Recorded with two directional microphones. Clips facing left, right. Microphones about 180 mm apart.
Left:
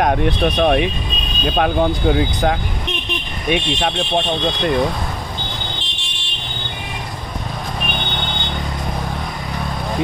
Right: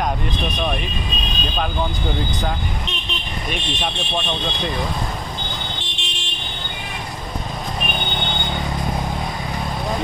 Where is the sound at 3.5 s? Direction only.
60° left (ahead or behind).